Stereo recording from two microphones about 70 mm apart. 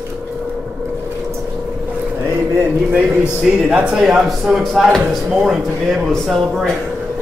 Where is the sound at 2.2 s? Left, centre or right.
Right.